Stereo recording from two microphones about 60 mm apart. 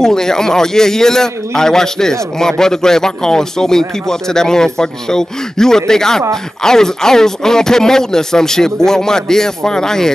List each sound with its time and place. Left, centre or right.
0.0 s a man's voice: centre